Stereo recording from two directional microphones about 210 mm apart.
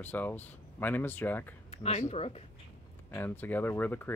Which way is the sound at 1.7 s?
30° left (ahead or behind).